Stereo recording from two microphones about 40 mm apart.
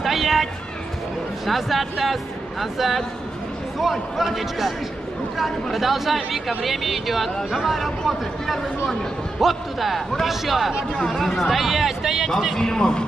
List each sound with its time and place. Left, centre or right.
0.0 s a sound: centre
1.4 s speech: centre
9.4 s speech: centre
11.4 s speech: centre
12.5 s a man's voice: centre